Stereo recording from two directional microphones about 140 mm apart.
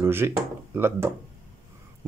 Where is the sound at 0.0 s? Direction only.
15° right (ahead or behind).